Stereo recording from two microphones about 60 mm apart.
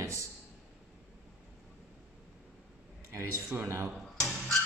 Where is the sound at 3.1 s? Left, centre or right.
Right.